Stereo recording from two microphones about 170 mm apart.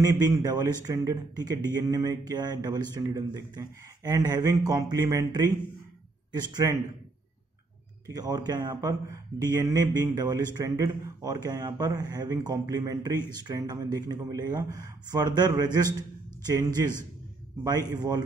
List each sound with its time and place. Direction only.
0.0 s a man's voice: 20° right (ahead or behind)
8.1 s a man's voice: 25° right (ahead or behind)